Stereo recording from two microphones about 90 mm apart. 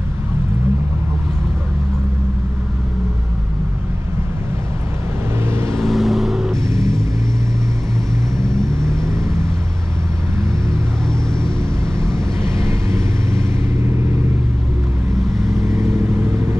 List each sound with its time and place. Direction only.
5.5 s vehicle: 30° right (ahead or behind)
5.8 s vehicle: centre (ahead or behind)
8.8 s vehicle: 35° right (ahead or behind)
11.8 s vehicle: 30° right (ahead or behind)